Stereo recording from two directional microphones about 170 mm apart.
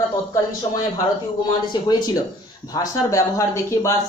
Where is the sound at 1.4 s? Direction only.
25° left (ahead or behind).